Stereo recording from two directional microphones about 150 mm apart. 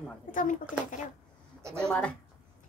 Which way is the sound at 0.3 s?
60° left (ahead or behind).